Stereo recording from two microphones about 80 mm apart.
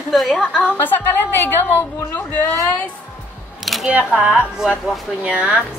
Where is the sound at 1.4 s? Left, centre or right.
Left.